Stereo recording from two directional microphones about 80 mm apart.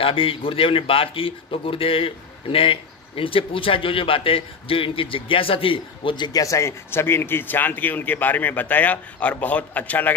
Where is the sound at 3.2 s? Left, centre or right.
Left.